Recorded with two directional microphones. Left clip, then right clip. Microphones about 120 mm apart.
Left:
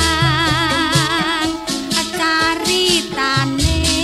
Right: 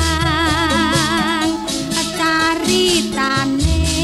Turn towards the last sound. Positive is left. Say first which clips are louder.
# even
turn(degrees=-35)  # may be behind; listen again after turning